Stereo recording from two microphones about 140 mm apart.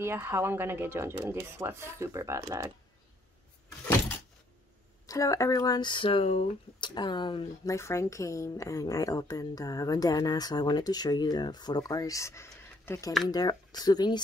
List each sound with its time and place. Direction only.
0.0 s speech: 15° right (ahead or behind)
5.0 s a woman's voice: 25° left (ahead or behind); by 6.5 s 50° left (ahead or behind)
6.8 s speech: 35° left (ahead or behind)
7.7 s a woman's voice: 20° left (ahead or behind)
13.3 s a woman's voice: 30° left (ahead or behind)